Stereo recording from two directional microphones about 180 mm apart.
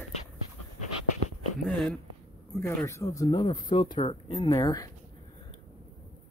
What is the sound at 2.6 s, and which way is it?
Speech, 15° left (ahead or behind).